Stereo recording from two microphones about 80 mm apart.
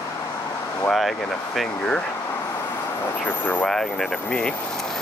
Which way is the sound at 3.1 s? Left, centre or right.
Left.